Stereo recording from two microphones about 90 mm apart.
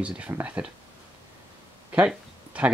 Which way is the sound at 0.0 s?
15° right (ahead or behind).